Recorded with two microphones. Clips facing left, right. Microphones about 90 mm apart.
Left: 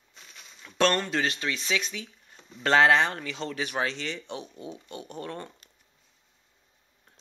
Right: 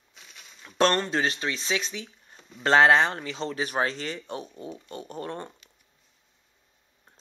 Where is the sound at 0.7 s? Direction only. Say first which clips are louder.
Right 2 dB; 35° right (ahead or behind).